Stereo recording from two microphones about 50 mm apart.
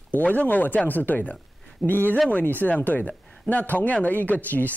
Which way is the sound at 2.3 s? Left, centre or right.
Left.